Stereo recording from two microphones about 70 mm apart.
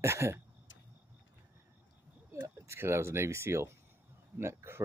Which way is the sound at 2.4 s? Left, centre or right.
Right.